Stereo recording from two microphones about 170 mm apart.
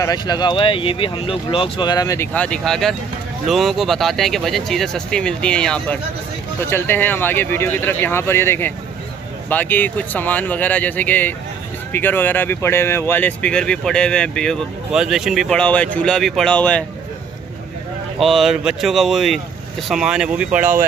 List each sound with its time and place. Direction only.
0.0 s speech: 25° left (ahead or behind)
2.3 s speech: 5° left (ahead or behind)
18.2 s speech: centre (ahead or behind)